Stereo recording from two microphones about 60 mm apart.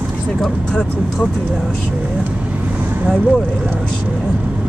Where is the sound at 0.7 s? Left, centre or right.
Centre.